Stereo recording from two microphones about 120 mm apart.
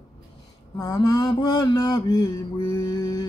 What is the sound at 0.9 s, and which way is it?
Mantra, 45° left (ahead or behind).